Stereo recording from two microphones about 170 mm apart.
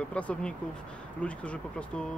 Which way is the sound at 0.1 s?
5° left (ahead or behind).